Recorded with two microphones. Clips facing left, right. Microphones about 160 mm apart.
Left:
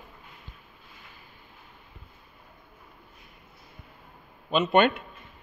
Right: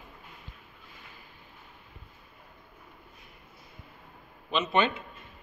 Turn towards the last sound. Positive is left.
turn(degrees=45)  # may be behind; listen again after turning